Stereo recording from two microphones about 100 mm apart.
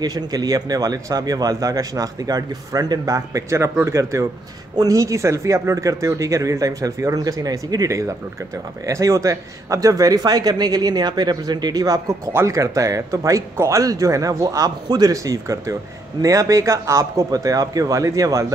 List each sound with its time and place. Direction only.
0.0 s speech: 40° right (ahead or behind)